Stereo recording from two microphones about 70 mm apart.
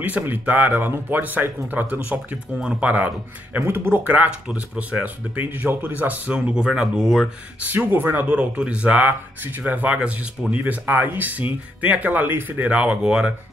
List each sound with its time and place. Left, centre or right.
0.0 s speech: right
6.3 s speech: centre
7.6 s speech: right